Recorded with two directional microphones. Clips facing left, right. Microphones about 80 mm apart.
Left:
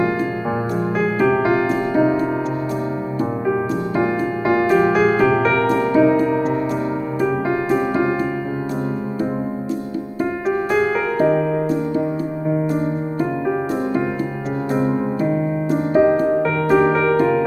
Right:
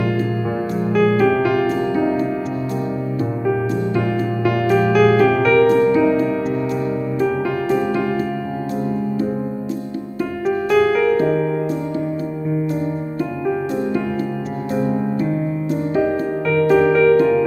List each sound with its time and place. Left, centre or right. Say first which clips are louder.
0.9 s music: right 3 dB; left
3.4 s music: right 3 dB; left
7.4 s music: even; left
10.7 s music: right 7 dB; left
15.9 s music: left 6 dB; left